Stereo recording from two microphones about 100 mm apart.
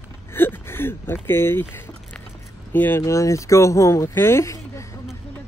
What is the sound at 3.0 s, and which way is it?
Speech, 30° left (ahead or behind).